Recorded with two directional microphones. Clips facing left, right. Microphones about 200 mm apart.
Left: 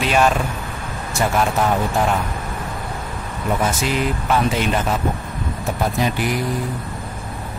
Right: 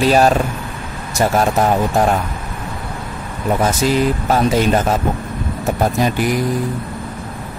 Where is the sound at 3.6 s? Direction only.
40° right (ahead or behind).